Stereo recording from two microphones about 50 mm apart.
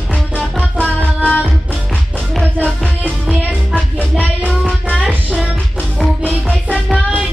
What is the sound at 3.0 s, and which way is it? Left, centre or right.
Music, right.